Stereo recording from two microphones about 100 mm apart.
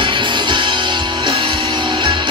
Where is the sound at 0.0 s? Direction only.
55° right (ahead or behind).